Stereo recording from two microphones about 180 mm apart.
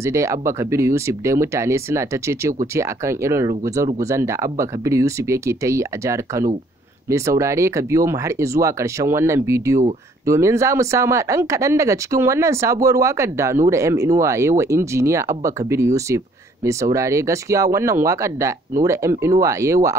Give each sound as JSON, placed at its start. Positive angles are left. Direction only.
{"t": 0.0, "sound": "speech", "side_deg": -15}